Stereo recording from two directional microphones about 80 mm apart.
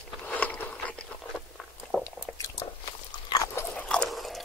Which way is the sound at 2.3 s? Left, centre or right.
Left.